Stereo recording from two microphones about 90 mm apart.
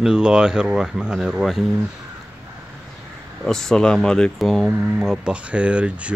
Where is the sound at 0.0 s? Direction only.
10° right (ahead or behind).